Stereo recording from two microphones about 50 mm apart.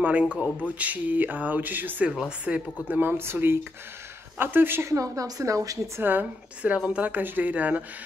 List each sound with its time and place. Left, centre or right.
0.0 s a woman's voice: right
2.0 s a woman's voice: centre
2.9 s speech: right
4.8 s a woman's voice: right
6.6 s speech: right